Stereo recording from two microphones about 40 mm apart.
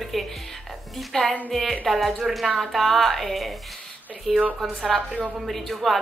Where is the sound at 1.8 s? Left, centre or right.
Centre.